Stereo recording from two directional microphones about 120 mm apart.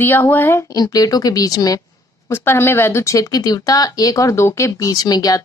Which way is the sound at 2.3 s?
20° left (ahead or behind).